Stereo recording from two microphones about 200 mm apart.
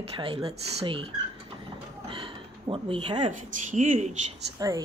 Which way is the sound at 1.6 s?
25° right (ahead or behind).